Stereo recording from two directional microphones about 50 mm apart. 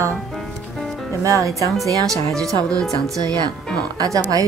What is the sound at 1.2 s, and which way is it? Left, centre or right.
Speech, right.